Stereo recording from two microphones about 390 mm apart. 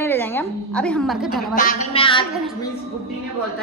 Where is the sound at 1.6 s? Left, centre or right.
Centre.